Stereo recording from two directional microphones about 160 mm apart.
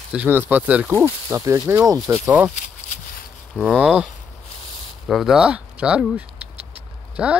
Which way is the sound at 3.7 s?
10° right (ahead or behind).